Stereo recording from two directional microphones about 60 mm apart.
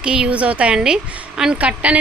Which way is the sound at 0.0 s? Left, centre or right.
Centre.